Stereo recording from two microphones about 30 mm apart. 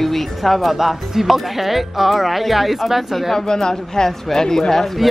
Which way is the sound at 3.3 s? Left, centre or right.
Left.